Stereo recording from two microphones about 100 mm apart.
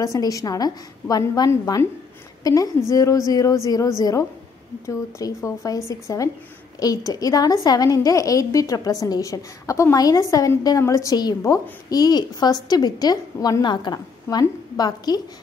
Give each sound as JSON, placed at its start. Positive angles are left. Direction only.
{"t": 0.0, "sound": "a woman's voice", "side_deg": 35}
{"t": 13.9, "sound": "a woman's voice", "side_deg": 30}
{"t": 14.8, "sound": "a woman's voice", "side_deg": 40}